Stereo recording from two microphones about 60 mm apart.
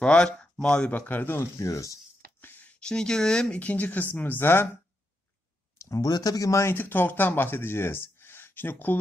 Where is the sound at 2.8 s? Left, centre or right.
Centre; by 4.6 s left.